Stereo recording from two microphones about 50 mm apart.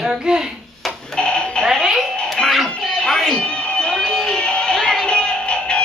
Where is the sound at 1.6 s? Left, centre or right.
Centre.